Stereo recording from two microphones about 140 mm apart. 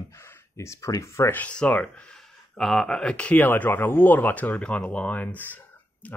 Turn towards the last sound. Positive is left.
turn(degrees=10)  # may be behind; listen again after turning